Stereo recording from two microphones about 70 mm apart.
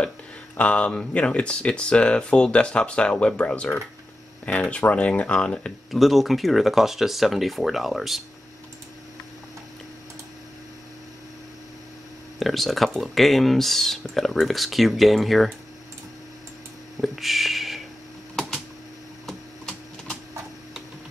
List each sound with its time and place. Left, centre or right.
0.6 s speech: centre
5.9 s speech: centre
12.4 s speech: centre
17.0 s a sound: centre